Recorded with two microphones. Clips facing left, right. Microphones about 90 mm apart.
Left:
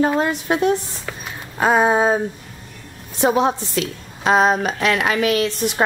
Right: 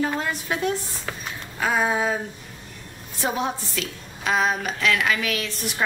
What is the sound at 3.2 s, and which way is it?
A woman's voice, 25° left (ahead or behind).